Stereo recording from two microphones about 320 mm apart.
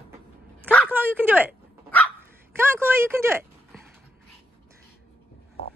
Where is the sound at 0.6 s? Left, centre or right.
Centre.